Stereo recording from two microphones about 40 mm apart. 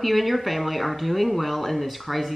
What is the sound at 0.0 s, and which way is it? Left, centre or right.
Speech, centre.